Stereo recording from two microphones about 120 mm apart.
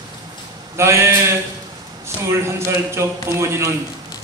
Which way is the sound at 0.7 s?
25° right (ahead or behind).